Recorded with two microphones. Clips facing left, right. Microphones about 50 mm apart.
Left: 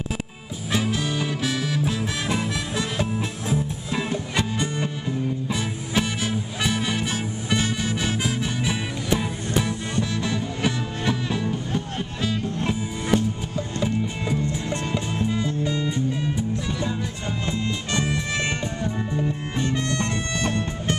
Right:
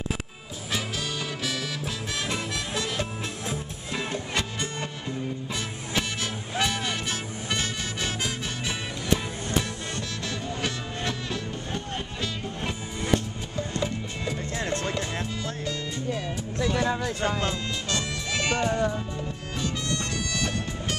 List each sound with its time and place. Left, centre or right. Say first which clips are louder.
0.9 s music: left 6 dB; left
17.5 s music: left 3 dB; left
19.6 s music: left 5 dB; left